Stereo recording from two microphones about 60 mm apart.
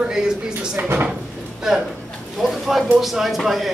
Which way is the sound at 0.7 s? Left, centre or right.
Right.